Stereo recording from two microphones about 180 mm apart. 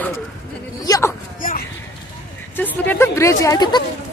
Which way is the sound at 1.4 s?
50° left (ahead or behind).